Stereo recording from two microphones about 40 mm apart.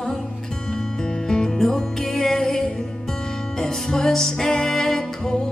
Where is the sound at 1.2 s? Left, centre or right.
Centre.